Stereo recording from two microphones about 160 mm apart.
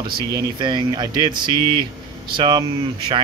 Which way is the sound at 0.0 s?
30° right (ahead or behind).